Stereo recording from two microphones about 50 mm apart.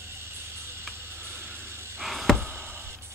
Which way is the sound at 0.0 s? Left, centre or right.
Right.